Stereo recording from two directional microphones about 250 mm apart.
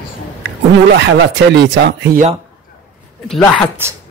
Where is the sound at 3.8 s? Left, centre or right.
Centre.